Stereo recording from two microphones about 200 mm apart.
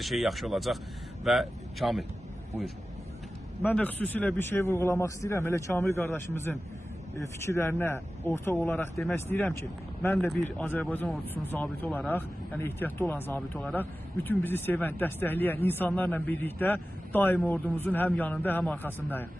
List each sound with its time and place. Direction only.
0.0 s speech: centre (ahead or behind)
3.6 s speech: 10° left (ahead or behind)